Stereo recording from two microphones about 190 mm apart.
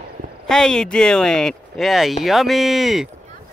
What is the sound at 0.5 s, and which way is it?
Speech, 5° left (ahead or behind).